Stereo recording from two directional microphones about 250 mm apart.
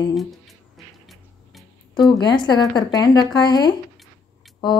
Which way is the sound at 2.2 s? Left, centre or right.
Centre.